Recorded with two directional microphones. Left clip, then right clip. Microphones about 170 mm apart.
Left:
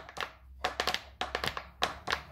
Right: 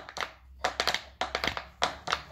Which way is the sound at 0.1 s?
10° left (ahead or behind).